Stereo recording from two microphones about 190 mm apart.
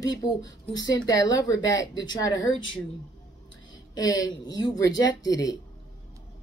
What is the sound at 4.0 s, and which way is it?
Music, 20° left (ahead or behind).